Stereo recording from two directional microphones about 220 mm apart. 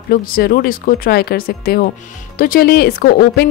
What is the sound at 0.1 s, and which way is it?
Speech, 40° left (ahead or behind).